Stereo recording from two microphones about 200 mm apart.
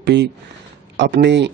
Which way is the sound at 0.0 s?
55° right (ahead or behind).